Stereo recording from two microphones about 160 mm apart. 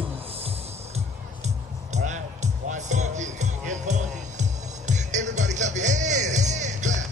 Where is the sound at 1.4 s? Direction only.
45° right (ahead or behind).